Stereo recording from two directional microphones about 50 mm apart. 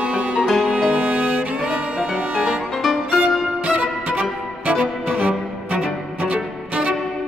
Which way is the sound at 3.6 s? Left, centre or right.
Right.